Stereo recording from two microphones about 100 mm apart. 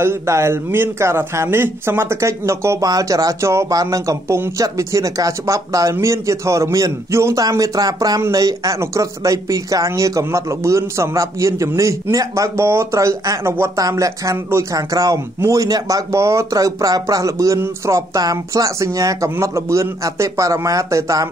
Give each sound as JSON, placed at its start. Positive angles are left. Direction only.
{"t": 0.0, "sound": "a man's voice", "side_deg": -25}